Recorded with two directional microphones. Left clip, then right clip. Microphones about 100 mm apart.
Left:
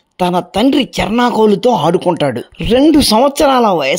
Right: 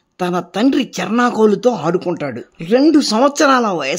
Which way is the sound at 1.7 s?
25° left (ahead or behind).